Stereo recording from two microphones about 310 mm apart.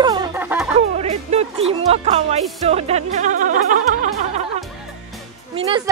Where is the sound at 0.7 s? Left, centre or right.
Right.